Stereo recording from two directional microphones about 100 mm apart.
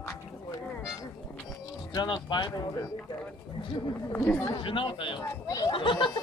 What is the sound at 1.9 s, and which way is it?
Speech, 45° left (ahead or behind).